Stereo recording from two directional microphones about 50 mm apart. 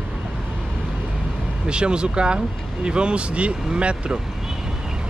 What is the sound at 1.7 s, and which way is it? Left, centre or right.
Speech, centre.